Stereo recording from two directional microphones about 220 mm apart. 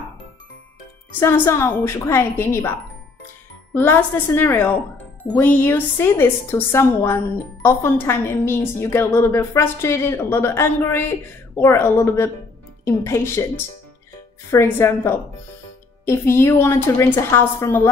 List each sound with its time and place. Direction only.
1.2 s a woman's voice: 10° left (ahead or behind)
3.7 s a woman's voice: 10° left (ahead or behind)
14.5 s a woman's voice: 10° left (ahead or behind)